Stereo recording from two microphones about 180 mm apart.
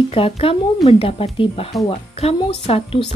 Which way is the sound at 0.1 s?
30° left (ahead or behind).